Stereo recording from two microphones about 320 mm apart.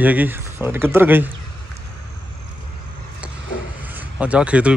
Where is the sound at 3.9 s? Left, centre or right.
Centre.